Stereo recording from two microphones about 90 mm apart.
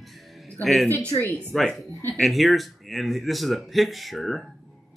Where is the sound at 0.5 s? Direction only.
5° left (ahead or behind).